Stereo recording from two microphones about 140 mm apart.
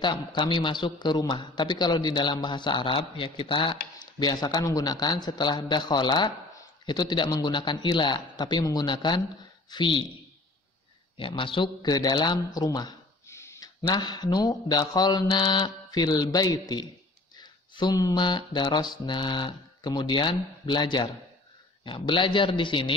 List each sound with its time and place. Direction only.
0.0 s a man's voice: 35° left (ahead or behind)
11.1 s a man's voice: 35° left (ahead or behind); by 13.7 s 20° left (ahead or behind)
13.8 s a man's voice: 30° left (ahead or behind)